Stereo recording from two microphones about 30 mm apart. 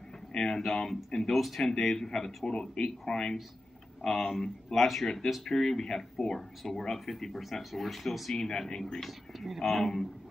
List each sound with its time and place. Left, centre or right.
0.3 s a sound: left
0.6 s speech: centre
1.3 s speech: centre
1.6 s speech: centre
4.6 s speech: centre
8.4 s speech: left